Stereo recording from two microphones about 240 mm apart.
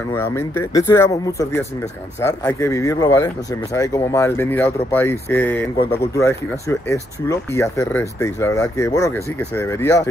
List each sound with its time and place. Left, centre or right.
0.1 s speech: centre